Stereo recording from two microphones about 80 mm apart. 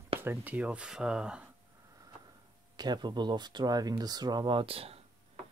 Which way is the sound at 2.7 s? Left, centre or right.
Right.